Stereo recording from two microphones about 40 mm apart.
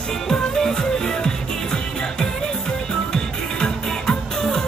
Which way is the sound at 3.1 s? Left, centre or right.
Centre.